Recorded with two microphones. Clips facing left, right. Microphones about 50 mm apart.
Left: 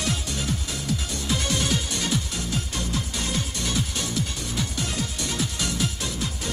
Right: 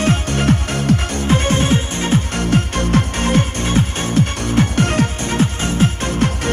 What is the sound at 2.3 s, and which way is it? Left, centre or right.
Music, right.